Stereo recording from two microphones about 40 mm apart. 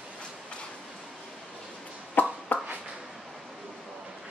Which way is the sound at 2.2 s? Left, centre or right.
Left.